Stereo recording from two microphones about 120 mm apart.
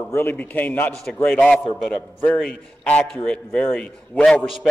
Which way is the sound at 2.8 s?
10° left (ahead or behind).